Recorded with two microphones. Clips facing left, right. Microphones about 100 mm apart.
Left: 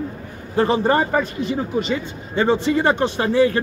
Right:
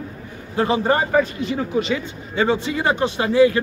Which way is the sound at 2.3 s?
40° left (ahead or behind).